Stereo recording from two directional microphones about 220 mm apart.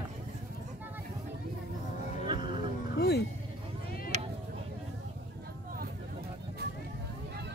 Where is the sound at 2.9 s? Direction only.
45° left (ahead or behind).